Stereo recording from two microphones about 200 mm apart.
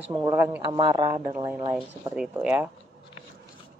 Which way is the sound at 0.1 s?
15° right (ahead or behind).